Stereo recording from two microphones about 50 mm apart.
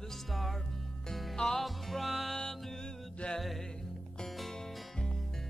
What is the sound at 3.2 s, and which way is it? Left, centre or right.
Music, left.